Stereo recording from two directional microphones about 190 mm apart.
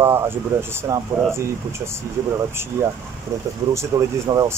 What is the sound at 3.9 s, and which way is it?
Speech, 15° right (ahead or behind).